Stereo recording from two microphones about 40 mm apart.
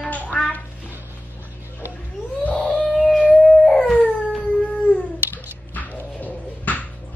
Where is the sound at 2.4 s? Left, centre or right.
Left.